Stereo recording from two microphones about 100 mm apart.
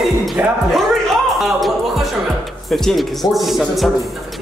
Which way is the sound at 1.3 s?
Centre (ahead or behind).